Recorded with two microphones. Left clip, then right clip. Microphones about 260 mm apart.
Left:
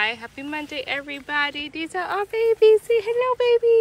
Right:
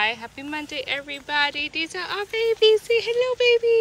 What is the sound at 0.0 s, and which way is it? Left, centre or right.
Speech, centre.